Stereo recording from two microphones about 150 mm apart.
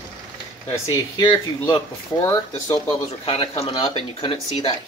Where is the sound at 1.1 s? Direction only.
30° left (ahead or behind).